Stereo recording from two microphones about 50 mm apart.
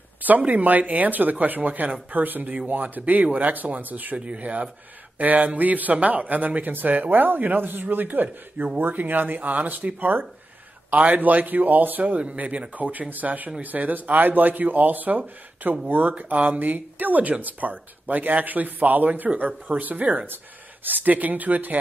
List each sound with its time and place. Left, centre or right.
0.4 s speech: right
9.9 s speech: right
12.2 s speech: right